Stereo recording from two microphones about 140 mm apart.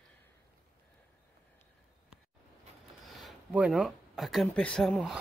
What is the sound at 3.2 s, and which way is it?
Speech, 5° right (ahead or behind).